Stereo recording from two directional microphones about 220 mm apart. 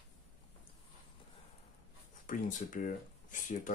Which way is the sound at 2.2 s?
35° left (ahead or behind).